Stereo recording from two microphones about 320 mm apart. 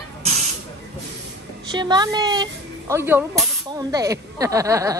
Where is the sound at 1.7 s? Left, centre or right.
Centre.